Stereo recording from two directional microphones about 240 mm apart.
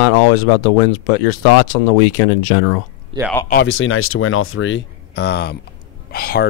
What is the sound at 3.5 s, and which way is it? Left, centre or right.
Speech, left.